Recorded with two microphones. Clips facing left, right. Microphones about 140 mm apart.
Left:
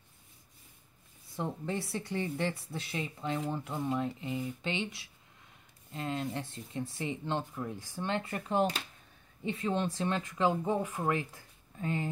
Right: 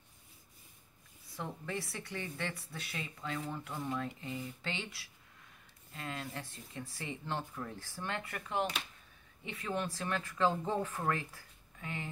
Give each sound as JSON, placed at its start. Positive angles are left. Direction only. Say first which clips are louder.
{"t": 1.3, "sound": "a woman's voice", "louder": "left 5 dB", "side_deg": 25}
{"t": 11.8, "sound": "speech", "louder": "left 9 dB", "side_deg": 35}